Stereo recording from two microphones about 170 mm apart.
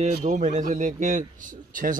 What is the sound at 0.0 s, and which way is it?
Speech, 45° right (ahead or behind).